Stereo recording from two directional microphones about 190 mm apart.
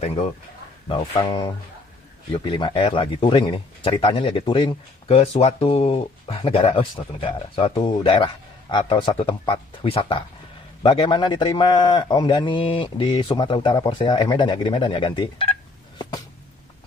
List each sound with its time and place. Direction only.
0.0 s a man's voice: 35° left (ahead or behind)